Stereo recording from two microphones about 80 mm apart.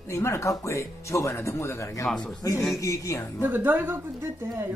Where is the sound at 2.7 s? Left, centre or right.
Left.